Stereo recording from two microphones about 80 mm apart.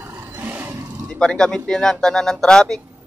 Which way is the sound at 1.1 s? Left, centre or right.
Centre.